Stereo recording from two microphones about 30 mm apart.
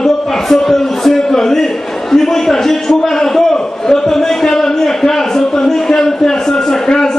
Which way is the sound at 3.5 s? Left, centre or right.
Centre.